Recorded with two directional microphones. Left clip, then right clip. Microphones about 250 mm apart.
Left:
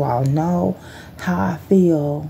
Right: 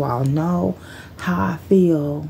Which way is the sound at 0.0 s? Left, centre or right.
Centre.